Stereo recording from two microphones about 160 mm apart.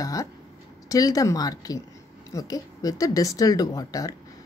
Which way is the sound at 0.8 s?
20° left (ahead or behind).